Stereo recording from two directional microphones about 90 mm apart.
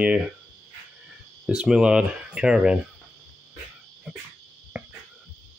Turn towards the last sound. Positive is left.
turn(degrees=-10)  # may be behind; listen again after turning